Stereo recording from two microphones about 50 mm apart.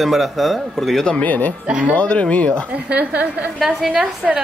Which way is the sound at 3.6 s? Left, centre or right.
Centre.